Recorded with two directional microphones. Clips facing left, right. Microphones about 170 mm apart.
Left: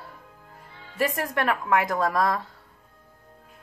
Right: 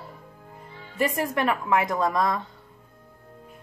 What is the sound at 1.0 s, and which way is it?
A woman's voice, centre (ahead or behind).